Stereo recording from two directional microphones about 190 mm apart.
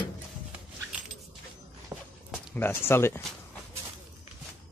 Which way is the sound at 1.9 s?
15° right (ahead or behind).